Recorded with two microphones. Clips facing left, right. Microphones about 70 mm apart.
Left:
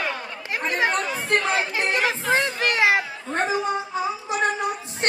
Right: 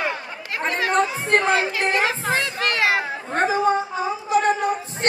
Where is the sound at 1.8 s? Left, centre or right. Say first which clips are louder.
Right 2 dB; right.